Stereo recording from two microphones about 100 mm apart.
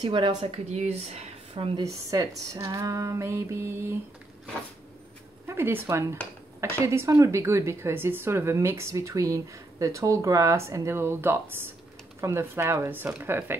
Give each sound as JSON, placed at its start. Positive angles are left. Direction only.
{"t": 0.0, "sound": "a woman's voice", "side_deg": -50}
{"t": 0.4, "sound": "speech", "side_deg": -90}
{"t": 1.8, "sound": "a woman's voice", "side_deg": -35}
{"t": 5.5, "sound": "a woman's voice", "side_deg": -20}